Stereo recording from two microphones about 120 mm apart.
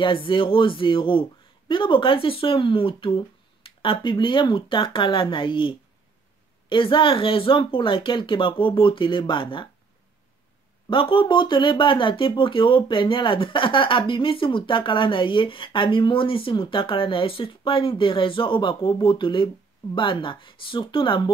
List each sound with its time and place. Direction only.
0.0 s speech: 45° left (ahead or behind)
10.9 s speech: 45° left (ahead or behind)